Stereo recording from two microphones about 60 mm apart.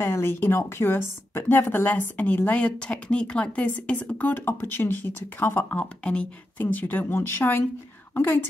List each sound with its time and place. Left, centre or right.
0.0 s speech: left
2.6 s speech: centre
5.7 s speech: left
7.2 s speech: left